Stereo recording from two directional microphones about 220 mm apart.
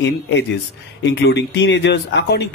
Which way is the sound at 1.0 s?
50° left (ahead or behind).